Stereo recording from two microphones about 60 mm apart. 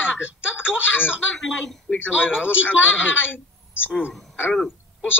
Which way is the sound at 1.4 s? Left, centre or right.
Centre.